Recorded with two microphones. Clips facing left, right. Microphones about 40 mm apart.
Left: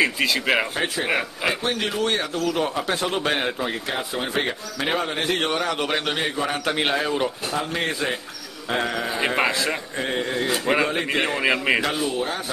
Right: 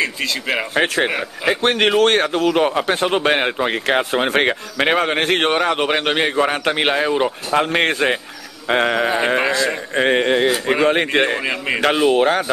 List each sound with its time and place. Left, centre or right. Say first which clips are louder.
0.0 s speech: left 1 dB; centre
0.7 s speech: right 5 dB; right
3.6 s speech: right 9 dB; right
7.5 s speech: right 12 dB; right
9.4 s speech: right 4 dB; centre
9.9 s speech: right 13 dB; right
11.1 s a man's voice: right 6 dB; right
11.4 s speech: left 1 dB; centre
11.8 s speech: right 10 dB; right